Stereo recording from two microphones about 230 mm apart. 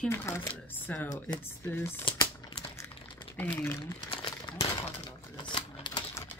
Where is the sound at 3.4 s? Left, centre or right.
Centre.